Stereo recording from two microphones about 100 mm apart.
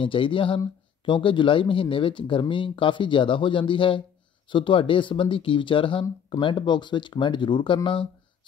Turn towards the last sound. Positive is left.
turn(degrees=50)  # may be behind; listen again after turning